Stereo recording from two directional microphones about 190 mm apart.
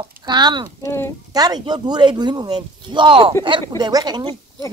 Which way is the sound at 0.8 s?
15° left (ahead or behind).